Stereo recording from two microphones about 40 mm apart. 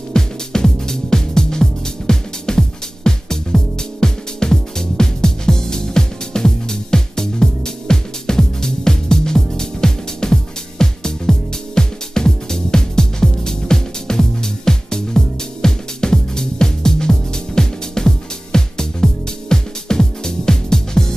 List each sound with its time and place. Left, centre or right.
0.1 s music: centre